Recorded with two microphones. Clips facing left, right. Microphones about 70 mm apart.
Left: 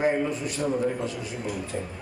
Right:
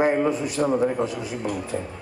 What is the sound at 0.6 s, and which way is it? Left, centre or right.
Speech, right.